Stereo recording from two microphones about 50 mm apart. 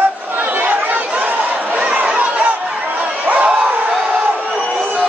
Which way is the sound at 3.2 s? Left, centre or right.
Right.